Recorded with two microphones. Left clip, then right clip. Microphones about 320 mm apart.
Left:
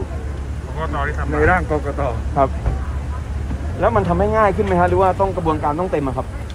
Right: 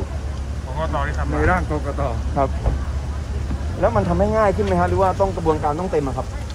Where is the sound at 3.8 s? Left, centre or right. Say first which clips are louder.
Left 2 dB; left.